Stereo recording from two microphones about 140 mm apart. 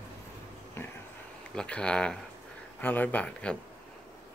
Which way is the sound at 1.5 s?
5° left (ahead or behind).